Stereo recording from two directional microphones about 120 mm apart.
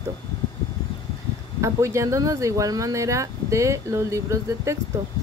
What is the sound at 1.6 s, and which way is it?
Speech, 25° right (ahead or behind).